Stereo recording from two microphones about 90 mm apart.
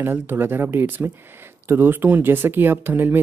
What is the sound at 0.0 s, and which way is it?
Speech, 25° right (ahead or behind).